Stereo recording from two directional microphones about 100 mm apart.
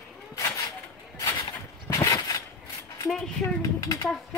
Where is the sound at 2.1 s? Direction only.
35° left (ahead or behind).